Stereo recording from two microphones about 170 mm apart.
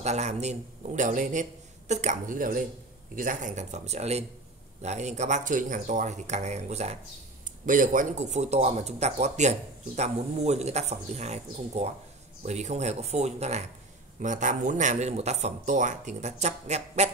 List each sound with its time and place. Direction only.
0.0 s speech: 40° right (ahead or behind)
7.6 s speech: 50° right (ahead or behind)